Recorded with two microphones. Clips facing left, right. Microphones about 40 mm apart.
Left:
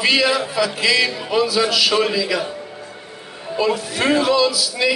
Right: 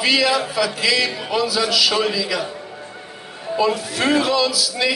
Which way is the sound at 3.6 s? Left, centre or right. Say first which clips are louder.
Even; centre.